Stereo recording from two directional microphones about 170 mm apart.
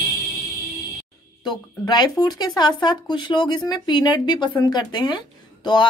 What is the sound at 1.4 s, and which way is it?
Speech, 25° left (ahead or behind).